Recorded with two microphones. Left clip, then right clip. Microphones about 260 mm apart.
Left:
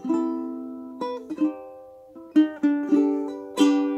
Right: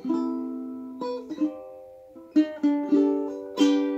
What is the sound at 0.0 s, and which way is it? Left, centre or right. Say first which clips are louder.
Music: left 2 dB; left.